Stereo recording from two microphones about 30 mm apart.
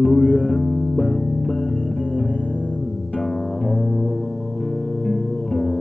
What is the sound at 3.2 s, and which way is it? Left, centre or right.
Music, centre.